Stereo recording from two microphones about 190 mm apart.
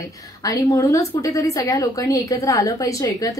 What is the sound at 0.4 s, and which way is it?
Speech, 20° left (ahead or behind).